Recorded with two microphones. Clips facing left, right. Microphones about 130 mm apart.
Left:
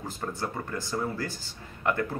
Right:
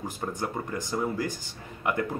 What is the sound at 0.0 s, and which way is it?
Speech, 15° right (ahead or behind).